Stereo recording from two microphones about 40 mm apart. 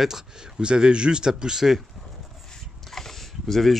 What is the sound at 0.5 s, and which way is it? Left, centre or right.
Speech, right.